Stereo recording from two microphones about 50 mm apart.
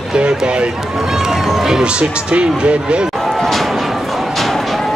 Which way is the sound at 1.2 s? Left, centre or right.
Centre.